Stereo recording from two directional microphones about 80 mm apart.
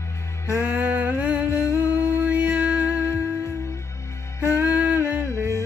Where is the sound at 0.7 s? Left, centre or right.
Right.